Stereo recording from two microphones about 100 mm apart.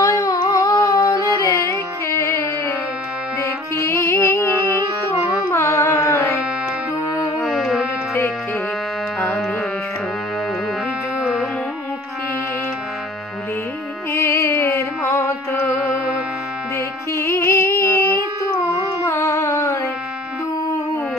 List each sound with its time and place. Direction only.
0.0 s humming: 40° left (ahead or behind)
1.1 s carnatic music: 35° left (ahead or behind)
3.4 s music: 30° left (ahead or behind)
5.3 s carnatic music: 30° left (ahead or behind)
7.3 s music: centre (ahead or behind)
14.1 s music: 25° left (ahead or behind)
18.7 s carnatic music: 30° left (ahead or behind)